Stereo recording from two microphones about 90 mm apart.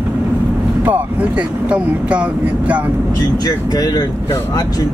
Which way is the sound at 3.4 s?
45° left (ahead or behind).